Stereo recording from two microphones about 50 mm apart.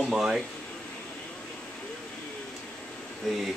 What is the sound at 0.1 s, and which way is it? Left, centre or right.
Speech, centre.